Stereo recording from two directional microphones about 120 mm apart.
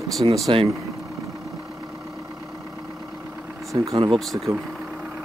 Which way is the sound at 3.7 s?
45° right (ahead or behind).